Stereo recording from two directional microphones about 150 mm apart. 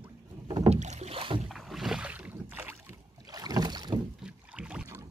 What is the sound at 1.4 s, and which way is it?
Rowboat, centre (ahead or behind).